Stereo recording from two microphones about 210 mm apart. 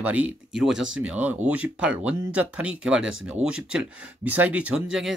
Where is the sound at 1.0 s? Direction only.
5° right (ahead or behind).